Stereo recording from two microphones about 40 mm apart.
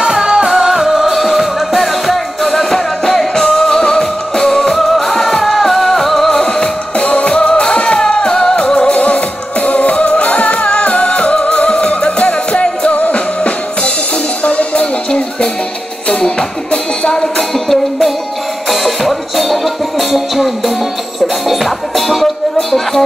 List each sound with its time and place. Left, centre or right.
0.0 s music: centre
6.4 s music: left
8.5 s music: left
16.1 s music: centre
17.6 s music: centre